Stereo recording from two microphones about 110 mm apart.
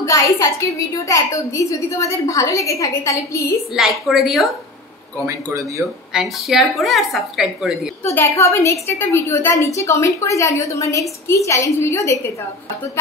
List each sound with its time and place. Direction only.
0.0 s a woman's voice: 30° left (ahead or behind)
3.7 s a woman's voice: centre (ahead or behind)
5.2 s speech: 25° right (ahead or behind)
6.1 s a woman's voice: centre (ahead or behind)
8.0 s a woman's voice: 25° left (ahead or behind)